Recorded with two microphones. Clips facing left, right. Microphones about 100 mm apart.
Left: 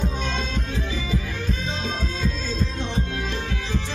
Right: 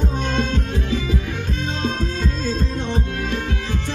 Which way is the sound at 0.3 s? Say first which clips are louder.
Right 7 dB; 50° right (ahead or behind).